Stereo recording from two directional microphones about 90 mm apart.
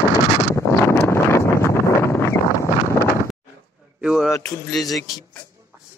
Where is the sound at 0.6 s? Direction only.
30° left (ahead or behind).